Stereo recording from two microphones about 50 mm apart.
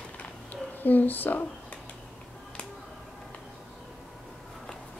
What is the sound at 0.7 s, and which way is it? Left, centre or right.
Speech, left.